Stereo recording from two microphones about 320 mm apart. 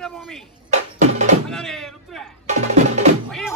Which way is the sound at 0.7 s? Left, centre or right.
Right.